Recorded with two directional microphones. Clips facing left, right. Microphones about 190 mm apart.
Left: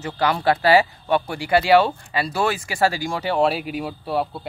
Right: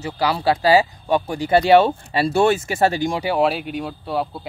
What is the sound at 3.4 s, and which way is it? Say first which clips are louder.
Speech: right 1 dB; centre (ahead or behind).